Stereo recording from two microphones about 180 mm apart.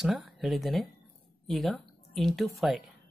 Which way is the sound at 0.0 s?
Centre (ahead or behind).